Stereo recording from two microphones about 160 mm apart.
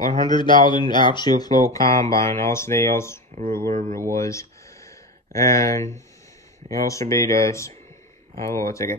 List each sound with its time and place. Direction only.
0.2 s speech: 30° left (ahead or behind)
3.3 s speech: 65° right (ahead or behind)
4.1 s a sound: 20° left (ahead or behind)
6.8 s speech: 20° left (ahead or behind)